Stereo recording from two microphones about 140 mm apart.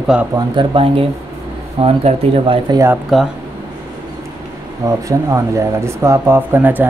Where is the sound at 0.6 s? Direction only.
40° right (ahead or behind).